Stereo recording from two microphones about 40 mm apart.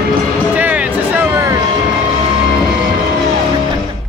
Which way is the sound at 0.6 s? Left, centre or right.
Right.